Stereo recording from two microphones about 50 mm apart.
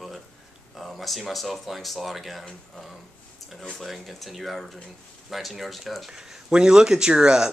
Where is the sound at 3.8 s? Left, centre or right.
Centre.